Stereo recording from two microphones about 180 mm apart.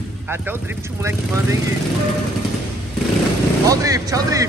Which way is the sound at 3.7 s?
20° right (ahead or behind).